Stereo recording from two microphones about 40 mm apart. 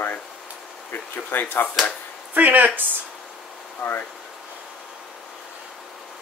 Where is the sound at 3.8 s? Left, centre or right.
Left.